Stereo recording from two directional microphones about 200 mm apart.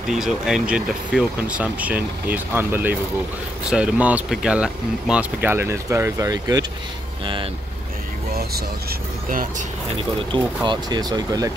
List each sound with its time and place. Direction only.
0.1 s speech: centre (ahead or behind); by 6.6 s 15° right (ahead or behind)
10.3 s speech: 20° right (ahead or behind)